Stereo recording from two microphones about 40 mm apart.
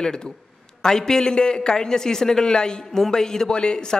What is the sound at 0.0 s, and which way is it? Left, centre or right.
A man's voice, centre.